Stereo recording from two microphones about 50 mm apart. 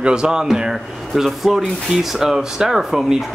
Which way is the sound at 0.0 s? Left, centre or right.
Centre.